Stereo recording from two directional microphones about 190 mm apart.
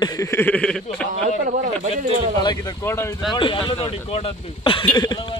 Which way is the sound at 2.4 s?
20° left (ahead or behind).